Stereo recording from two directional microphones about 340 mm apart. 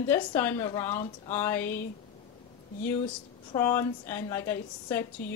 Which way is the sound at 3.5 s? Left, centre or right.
Centre.